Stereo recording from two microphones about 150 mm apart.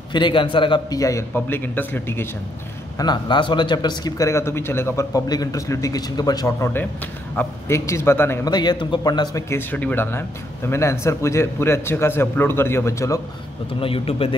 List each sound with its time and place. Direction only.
0.1 s speech: 30° left (ahead or behind); by 2.2 s 15° left (ahead or behind)
3.0 s a man's voice: 30° left (ahead or behind)
8.5 s a man's voice: 30° left (ahead or behind)
13.7 s speech: 40° left (ahead or behind)